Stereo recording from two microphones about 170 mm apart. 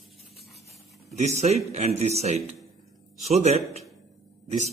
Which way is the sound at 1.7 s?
40° right (ahead or behind).